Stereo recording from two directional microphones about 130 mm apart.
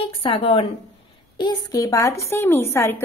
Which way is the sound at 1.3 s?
30° left (ahead or behind).